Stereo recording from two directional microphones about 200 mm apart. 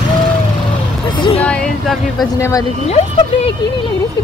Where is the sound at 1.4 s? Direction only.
5° left (ahead or behind).